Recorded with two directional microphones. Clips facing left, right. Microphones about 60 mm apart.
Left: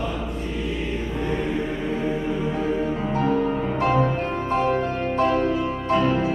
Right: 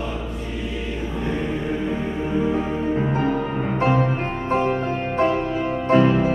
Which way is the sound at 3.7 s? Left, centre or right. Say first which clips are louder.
Right 2 dB; right.